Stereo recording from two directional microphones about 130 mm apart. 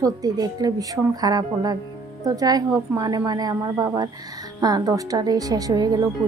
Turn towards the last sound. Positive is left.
turn(degrees=-30)  # may be behind; listen again after turning